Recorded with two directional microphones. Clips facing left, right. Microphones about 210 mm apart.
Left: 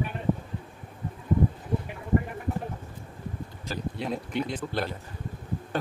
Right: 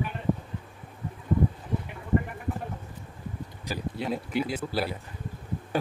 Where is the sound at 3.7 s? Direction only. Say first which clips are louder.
Right 1 dB; 5° right (ahead or behind).